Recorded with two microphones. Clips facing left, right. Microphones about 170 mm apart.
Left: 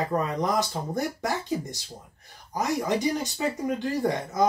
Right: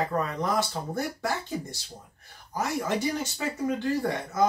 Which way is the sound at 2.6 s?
15° left (ahead or behind).